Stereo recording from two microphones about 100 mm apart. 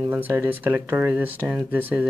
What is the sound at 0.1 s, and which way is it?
Speech, 20° right (ahead or behind).